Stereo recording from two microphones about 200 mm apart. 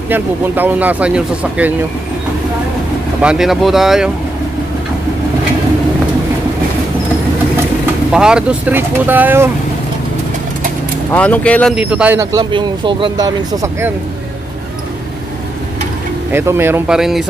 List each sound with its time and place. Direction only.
0.1 s a man's voice: 10° right (ahead or behind)
3.2 s speech: 5° right (ahead or behind)
8.1 s a man's voice: 5° right (ahead or behind)
11.1 s speech: 5° left (ahead or behind)
11.7 s a man's voice: 5° right (ahead or behind)
16.3 s a man's voice: 10° right (ahead or behind)